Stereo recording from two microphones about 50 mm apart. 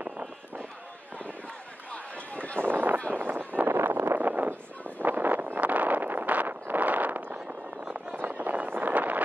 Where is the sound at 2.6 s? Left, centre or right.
Right.